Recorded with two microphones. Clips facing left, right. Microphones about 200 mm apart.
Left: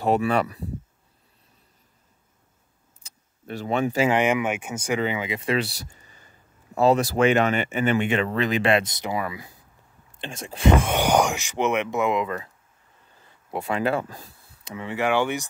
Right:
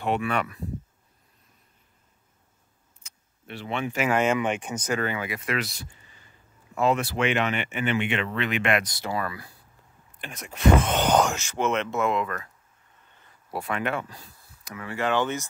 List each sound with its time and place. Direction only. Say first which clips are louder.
0.0 s speech: left 5 dB; 35° left (ahead or behind)
3.0 s vehicle: left 6 dB; 40° left (ahead or behind)
4.1 s speech: left 1 dB; 15° left (ahead or behind)
10.1 s speech: left 5 dB; 30° left (ahead or behind)
10.8 s speech: left 1 dB; 10° left (ahead or behind)
13.7 s speech: left 5 dB; 30° left (ahead or behind); by 15.4 s 15° left (ahead or behind)